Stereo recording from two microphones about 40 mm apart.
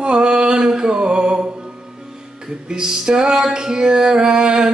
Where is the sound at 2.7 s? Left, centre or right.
Centre.